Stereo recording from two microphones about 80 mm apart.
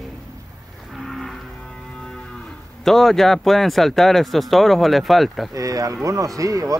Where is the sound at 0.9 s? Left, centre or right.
Centre.